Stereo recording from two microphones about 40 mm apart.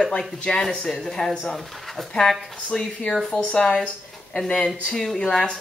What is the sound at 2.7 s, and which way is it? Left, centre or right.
Speech, centre.